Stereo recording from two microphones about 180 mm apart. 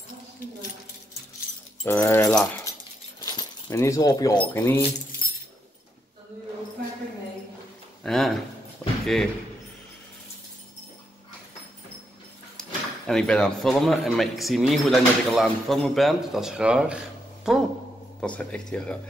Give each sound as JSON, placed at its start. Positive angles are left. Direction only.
{"t": 1.9, "sound": "speech", "side_deg": 15}
{"t": 3.2, "sound": "keys jangling", "side_deg": 20}
{"t": 4.6, "sound": "speech", "side_deg": 10}
{"t": 8.0, "sound": "speech", "side_deg": 5}
{"t": 12.5, "sound": "speech", "side_deg": 5}